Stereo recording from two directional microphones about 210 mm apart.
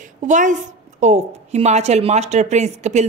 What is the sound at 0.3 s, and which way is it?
Speech, 35° right (ahead or behind).